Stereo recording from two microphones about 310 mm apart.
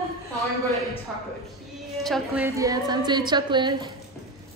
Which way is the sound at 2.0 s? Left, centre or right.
Centre.